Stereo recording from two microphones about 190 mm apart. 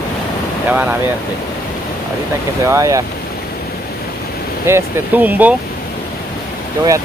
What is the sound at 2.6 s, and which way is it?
Speech, 15° right (ahead or behind).